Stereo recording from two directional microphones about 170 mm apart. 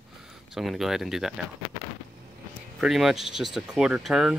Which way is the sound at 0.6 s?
Centre (ahead or behind).